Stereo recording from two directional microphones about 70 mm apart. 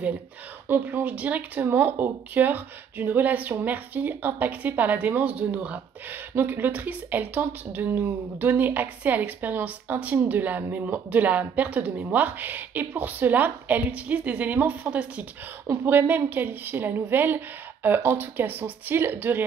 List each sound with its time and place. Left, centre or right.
0.7 s speech: right
6.3 s speech: right